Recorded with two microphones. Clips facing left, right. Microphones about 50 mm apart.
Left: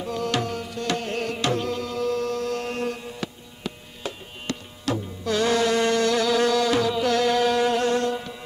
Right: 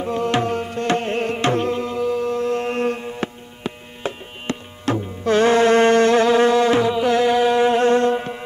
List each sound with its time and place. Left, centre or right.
0.0 s music: right